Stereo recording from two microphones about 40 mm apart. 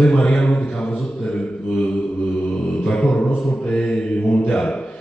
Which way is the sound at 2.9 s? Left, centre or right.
Left.